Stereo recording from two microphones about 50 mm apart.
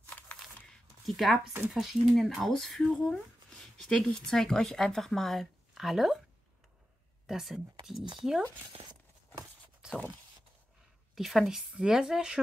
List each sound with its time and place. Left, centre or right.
0.1 s a sound: left
1.0 s speech: centre
3.0 s a sound: centre
3.9 s speech: centre
5.8 s speech: centre
7.2 s speech: centre
11.1 s speech: centre